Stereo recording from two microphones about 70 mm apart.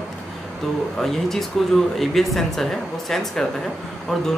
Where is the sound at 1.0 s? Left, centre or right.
Centre.